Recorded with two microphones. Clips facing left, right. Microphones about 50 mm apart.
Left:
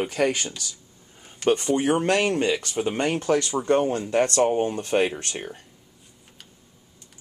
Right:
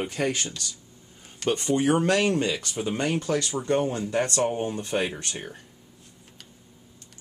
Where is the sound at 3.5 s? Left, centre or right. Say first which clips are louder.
Left 3 dB; centre.